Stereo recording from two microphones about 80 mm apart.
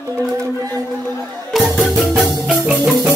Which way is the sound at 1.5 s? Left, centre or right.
Centre.